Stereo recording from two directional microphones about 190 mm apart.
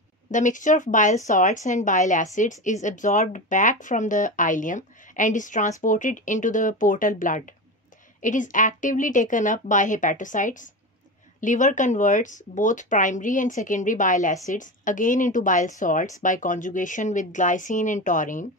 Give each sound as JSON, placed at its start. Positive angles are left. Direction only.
{"t": 0.3, "sound": "speech", "side_deg": 40}